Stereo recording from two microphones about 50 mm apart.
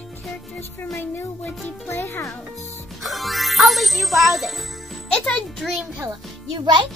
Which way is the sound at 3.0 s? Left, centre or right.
Centre.